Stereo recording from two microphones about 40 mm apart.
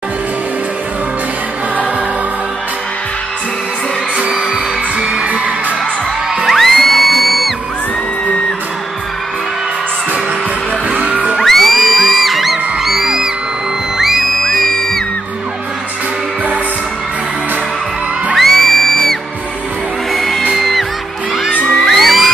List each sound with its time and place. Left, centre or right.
4.9 s music: right
6.4 s music: centre
10.9 s music: right
11.4 s music: centre
14.4 s music: centre
18.3 s music: centre
20.1 s music: centre
21.7 s music: centre